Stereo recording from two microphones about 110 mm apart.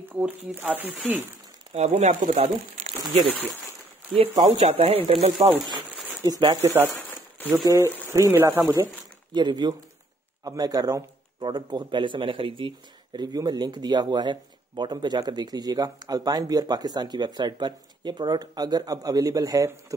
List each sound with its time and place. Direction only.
0.1 s speech: 15° right (ahead or behind)
1.7 s speech: 85° right; by 3.0 s 65° right (ahead or behind)
4.1 s speech: 65° right (ahead or behind)
6.6 s speech: 25° right (ahead or behind)
7.0 s crumpling: 15° left (ahead or behind)
7.6 s speech: 25° right (ahead or behind)
9.3 s speech: 40° right (ahead or behind)